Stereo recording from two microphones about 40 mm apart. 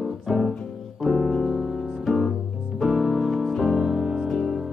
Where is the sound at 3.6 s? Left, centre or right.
Centre.